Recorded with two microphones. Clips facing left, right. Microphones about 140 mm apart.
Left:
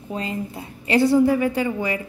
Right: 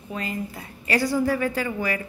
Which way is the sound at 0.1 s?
30° left (ahead or behind).